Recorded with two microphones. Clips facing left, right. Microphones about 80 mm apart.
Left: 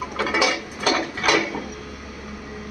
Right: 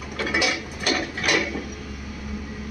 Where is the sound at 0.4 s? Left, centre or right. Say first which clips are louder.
Left 3 dB; left.